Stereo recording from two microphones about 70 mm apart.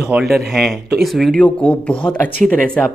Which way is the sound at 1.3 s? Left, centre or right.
Centre.